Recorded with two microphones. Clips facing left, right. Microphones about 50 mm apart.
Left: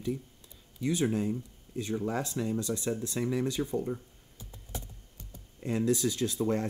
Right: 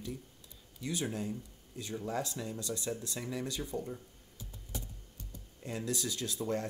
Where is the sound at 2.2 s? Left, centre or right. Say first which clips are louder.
Left 7 dB; left.